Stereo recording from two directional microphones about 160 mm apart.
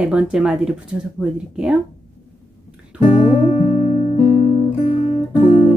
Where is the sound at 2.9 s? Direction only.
5° right (ahead or behind).